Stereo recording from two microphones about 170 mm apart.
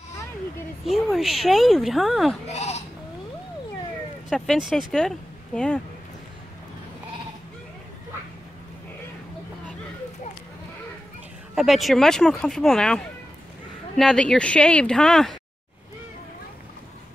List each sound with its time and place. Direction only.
0.8 s speech: centre (ahead or behind)
2.4 s speech: 40° left (ahead or behind)
4.3 s speech: centre (ahead or behind)
11.5 s speech: centre (ahead or behind)